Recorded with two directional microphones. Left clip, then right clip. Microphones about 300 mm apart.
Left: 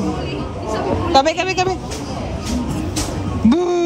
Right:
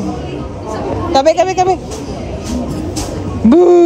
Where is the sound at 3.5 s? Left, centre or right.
Centre.